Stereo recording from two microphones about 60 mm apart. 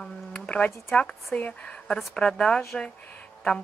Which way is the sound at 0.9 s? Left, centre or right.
Centre.